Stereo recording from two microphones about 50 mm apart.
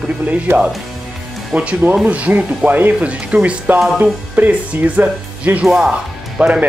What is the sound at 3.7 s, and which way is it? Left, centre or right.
Speech, centre.